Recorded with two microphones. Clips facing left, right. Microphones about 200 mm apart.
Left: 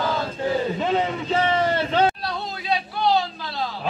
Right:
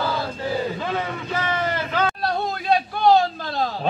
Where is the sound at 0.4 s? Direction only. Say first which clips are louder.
Left 2 dB; 20° left (ahead or behind).